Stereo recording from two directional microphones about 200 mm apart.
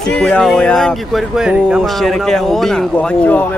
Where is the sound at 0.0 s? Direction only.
5° left (ahead or behind).